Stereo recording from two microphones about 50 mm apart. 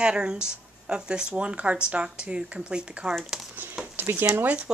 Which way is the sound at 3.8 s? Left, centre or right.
Right.